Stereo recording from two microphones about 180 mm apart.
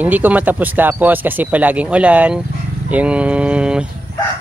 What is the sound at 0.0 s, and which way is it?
Speech, 10° right (ahead or behind).